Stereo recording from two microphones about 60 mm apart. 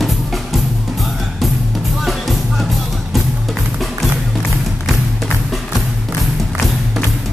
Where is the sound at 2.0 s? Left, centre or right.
Centre.